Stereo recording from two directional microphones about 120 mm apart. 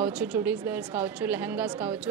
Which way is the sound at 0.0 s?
10° right (ahead or behind).